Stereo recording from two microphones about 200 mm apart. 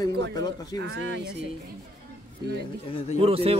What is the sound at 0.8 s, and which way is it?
Speech, 65° right (ahead or behind).